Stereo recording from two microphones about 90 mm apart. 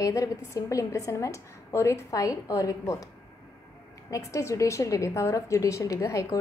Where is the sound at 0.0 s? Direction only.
40° left (ahead or behind).